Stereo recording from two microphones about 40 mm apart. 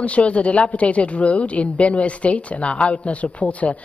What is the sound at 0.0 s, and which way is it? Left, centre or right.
Speech, left.